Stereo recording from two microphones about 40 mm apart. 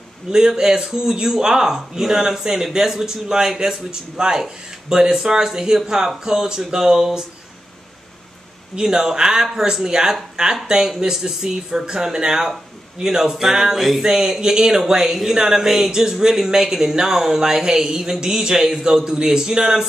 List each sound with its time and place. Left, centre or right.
0.3 s a man's voice: centre
8.7 s a man's voice: centre